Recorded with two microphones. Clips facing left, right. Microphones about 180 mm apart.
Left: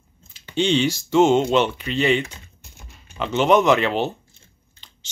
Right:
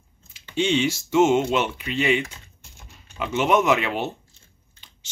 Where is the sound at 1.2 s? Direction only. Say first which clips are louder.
Left 2 dB; 30° left (ahead or behind).